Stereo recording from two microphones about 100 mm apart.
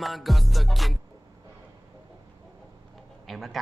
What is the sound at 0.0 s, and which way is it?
Speech, centre (ahead or behind).